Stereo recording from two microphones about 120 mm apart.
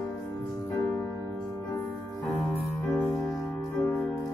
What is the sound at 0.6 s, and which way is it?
Music, 20° left (ahead or behind).